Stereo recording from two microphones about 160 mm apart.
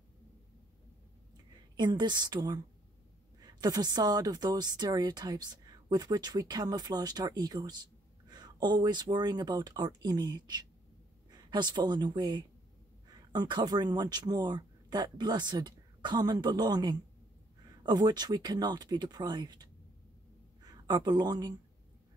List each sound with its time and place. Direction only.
1.8 s speech: 25° right (ahead or behind)